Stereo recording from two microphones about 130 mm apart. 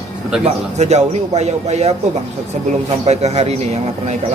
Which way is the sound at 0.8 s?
60° right (ahead or behind).